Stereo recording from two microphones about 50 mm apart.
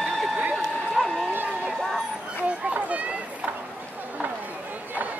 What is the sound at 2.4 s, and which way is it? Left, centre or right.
Children playing, right.